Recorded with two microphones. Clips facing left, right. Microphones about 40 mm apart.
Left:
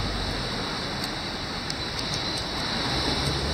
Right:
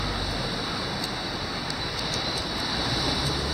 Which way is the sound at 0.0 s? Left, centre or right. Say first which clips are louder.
Right 1 dB; centre.